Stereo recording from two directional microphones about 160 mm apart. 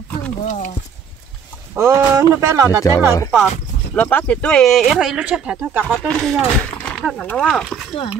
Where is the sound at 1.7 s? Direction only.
20° right (ahead or behind).